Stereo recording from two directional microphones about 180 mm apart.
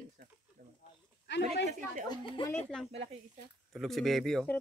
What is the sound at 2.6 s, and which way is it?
A woman's voice, 5° left (ahead or behind).